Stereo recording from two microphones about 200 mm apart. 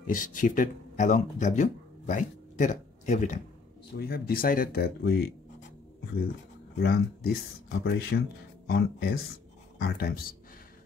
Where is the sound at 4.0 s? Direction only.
50° left (ahead or behind).